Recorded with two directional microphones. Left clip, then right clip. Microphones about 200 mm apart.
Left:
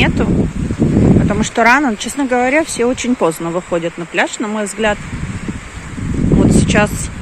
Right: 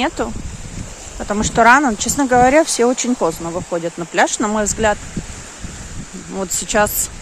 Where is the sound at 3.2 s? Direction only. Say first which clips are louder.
Left 4 dB; centre (ahead or behind).